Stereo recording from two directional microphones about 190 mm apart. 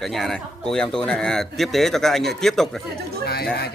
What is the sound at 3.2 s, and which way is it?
Speech, 60° left (ahead or behind).